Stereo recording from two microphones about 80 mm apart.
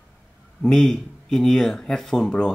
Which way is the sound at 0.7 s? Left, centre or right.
Centre.